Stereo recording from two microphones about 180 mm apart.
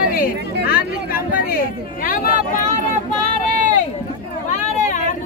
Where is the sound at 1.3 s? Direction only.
55° left (ahead or behind).